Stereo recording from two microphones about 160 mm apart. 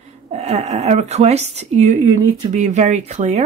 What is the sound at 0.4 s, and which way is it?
Speech, 40° right (ahead or behind).